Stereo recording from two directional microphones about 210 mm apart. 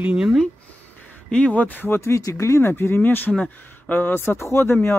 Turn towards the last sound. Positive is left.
turn(degrees=10)  # may be behind; listen again after turning